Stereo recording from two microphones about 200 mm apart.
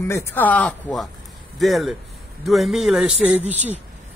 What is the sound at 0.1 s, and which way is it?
A man's voice, 10° left (ahead or behind).